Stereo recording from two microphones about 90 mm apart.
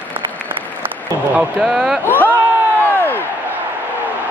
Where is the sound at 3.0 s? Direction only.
25° left (ahead or behind).